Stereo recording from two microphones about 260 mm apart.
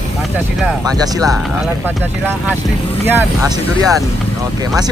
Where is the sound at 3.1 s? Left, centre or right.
Centre.